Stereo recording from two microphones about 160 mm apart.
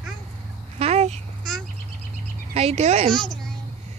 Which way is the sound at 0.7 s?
40° right (ahead or behind).